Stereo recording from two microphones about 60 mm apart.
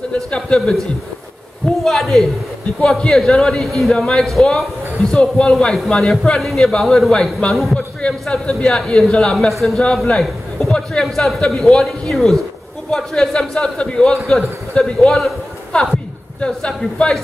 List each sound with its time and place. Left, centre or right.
0.1 s a man's voice: centre
1.9 s a man's voice: centre
7.7 s a man's voice: centre
12.9 s a man's voice: centre
16.3 s a man's voice: centre